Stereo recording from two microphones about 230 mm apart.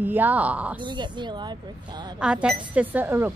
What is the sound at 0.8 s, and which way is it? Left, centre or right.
Speech, centre.